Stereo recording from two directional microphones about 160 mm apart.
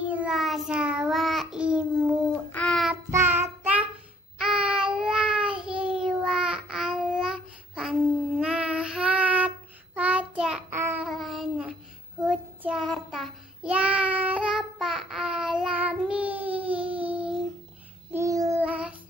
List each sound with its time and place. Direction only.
0.1 s child singing: 5° right (ahead or behind)
2.5 s child singing: 5° left (ahead or behind)
3.1 s child singing: 15° right (ahead or behind)
11.1 s child singing: centre (ahead or behind)
16.3 s a sound: 10° right (ahead or behind)
16.9 s child singing: 10° right (ahead or behind)
18.1 s child singing: 20° right (ahead or behind)
18.6 s child singing: 10° right (ahead or behind)